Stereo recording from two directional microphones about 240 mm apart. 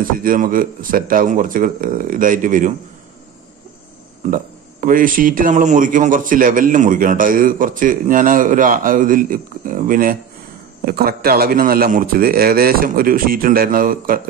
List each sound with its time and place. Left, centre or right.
0.0 s speech: right
4.3 s speech: right